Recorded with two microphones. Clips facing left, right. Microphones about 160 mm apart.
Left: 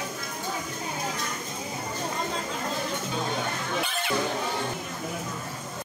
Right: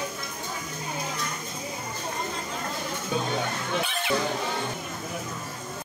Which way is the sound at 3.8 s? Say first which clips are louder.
Even; centre (ahead or behind).